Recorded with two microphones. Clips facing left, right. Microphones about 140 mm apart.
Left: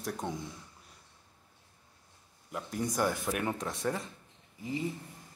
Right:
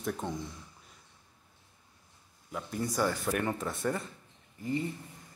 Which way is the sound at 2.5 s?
Centre (ahead or behind).